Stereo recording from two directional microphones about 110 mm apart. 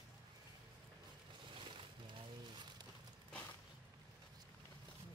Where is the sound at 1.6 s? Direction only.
45° right (ahead or behind).